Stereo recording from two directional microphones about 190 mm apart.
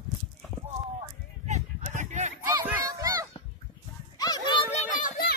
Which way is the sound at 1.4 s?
35° right (ahead or behind).